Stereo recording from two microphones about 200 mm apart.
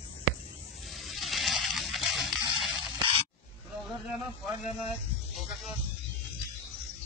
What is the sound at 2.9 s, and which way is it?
Spray, 25° right (ahead or behind).